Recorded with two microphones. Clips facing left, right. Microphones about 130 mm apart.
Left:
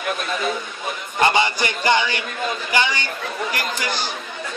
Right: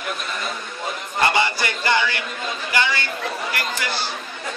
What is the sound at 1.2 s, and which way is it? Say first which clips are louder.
Speech: left 2 dB; 20° left (ahead or behind).